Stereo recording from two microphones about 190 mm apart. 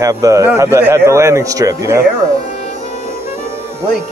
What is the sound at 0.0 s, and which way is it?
A man's voice, 15° right (ahead or behind).